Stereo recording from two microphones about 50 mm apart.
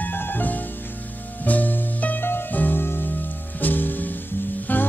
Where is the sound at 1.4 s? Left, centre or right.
Left.